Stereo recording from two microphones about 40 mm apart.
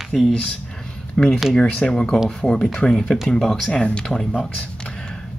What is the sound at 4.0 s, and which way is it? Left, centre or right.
Speech, centre.